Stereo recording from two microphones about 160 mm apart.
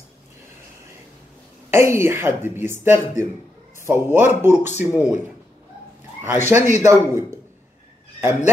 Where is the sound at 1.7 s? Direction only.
15° right (ahead or behind).